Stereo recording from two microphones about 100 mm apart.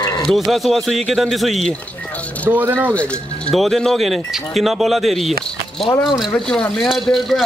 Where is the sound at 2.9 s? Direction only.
10° left (ahead or behind).